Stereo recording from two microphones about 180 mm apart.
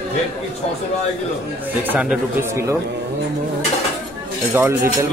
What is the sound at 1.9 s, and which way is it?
Speech, 10° right (ahead or behind).